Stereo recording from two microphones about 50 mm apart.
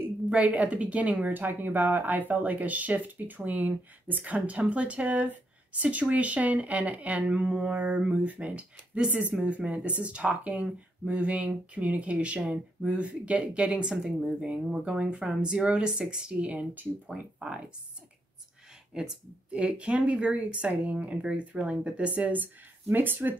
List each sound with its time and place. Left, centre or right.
0.3 s speech: right
1.3 s speech: right
18.9 s speech: centre; by 23.3 s right